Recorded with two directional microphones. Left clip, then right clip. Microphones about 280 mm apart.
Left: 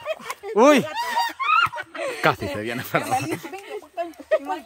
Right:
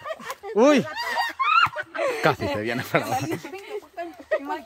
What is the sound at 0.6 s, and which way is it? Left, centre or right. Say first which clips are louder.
Speech: left 3 dB; centre.